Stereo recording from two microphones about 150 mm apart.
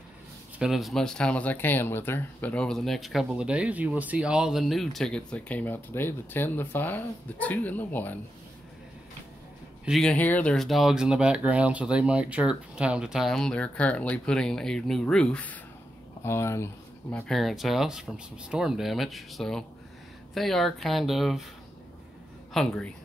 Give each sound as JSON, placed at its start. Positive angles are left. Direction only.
{"t": 0.6, "sound": "speech", "side_deg": 0}
{"t": 9.8, "sound": "speech", "side_deg": 0}
{"t": 17.1, "sound": "speech", "side_deg": 0}
{"t": 22.5, "sound": "speech", "side_deg": 5}